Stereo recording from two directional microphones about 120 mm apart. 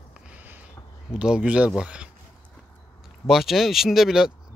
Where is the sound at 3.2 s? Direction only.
Centre (ahead or behind).